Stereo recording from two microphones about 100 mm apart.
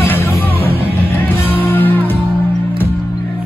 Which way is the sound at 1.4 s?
20° left (ahead or behind).